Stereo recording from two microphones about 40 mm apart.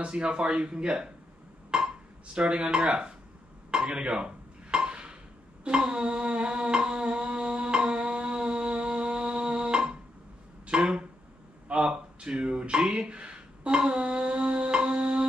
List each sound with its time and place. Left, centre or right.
0.0 s speech: right
3.7 s dishes: right
5.6 s music: right
10.7 s a sound: right